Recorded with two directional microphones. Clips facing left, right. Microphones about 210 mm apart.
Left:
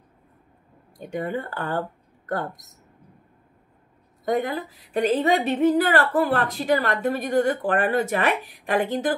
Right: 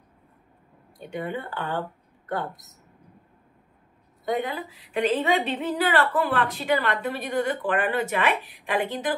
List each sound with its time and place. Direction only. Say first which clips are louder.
0.9 s a woman's voice: left 3 dB; 45° left (ahead or behind)
4.3 s a woman's voice: left 3 dB; 45° left (ahead or behind)